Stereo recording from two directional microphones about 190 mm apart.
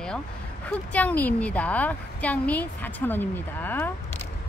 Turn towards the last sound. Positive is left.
turn(degrees=10)  # may be behind; listen again after turning